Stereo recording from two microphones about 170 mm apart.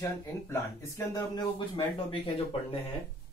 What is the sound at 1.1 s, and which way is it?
Speech, 25° left (ahead or behind).